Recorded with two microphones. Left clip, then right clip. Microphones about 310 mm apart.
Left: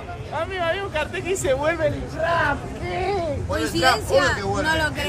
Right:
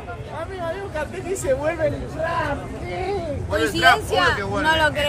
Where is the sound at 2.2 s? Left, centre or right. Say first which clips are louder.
Left 3 dB; centre.